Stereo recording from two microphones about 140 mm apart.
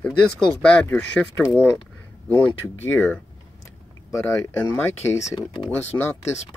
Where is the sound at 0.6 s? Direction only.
10° left (ahead or behind).